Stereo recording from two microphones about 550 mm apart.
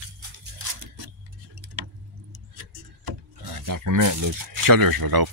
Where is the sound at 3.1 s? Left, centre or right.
Right.